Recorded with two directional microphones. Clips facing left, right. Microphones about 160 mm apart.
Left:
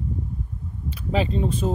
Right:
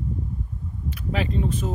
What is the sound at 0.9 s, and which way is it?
Speech, 30° left (ahead or behind).